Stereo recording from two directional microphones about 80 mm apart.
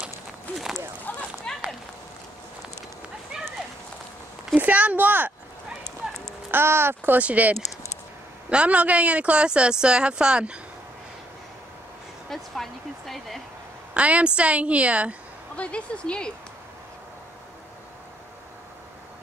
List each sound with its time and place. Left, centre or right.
1.1 s a sound: left
1.5 s run: centre
4.6 s speech: centre
5.7 s clip-clop: centre
6.5 s speech: right; by 10.6 s centre
12.3 s speech: centre
13.9 s speech: centre
15.5 s speech: centre